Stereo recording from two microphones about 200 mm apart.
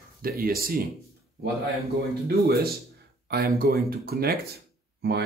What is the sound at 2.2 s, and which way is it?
Speech, 50° right (ahead or behind).